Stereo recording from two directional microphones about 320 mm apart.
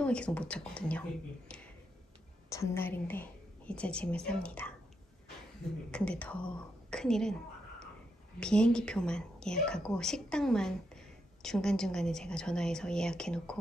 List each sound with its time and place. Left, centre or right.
0.0 s speech: centre
2.5 s speech: centre
5.9 s speech: centre
8.4 s speech: centre